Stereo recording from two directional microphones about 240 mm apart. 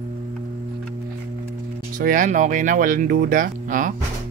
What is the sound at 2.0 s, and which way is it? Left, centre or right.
Speech, right.